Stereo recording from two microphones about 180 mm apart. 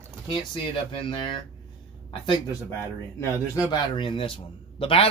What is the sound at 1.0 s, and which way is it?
Speech, 25° left (ahead or behind).